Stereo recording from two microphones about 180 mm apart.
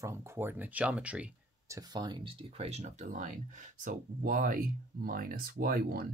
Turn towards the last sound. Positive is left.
turn(degrees=-55)  # may be behind; listen again after turning